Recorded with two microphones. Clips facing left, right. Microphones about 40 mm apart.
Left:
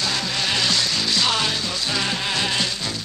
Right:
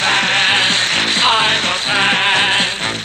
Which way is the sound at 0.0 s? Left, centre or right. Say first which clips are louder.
Right 10 dB; right.